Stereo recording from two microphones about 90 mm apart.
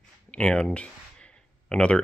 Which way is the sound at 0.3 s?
10° left (ahead or behind).